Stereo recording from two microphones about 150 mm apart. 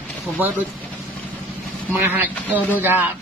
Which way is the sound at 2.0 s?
10° right (ahead or behind).